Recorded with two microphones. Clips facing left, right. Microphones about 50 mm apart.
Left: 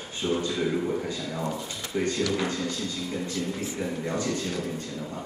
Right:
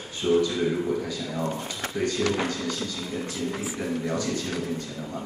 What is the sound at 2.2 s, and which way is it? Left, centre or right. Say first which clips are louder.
Speech: right 4 dB; right.